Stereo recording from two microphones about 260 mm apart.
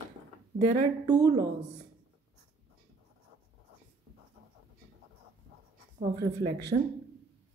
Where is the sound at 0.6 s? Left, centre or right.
Right.